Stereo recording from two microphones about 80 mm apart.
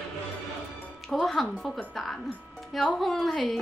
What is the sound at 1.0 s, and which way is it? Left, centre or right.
Music, centre.